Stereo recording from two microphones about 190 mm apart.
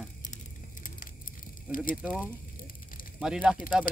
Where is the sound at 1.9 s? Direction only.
5° right (ahead or behind).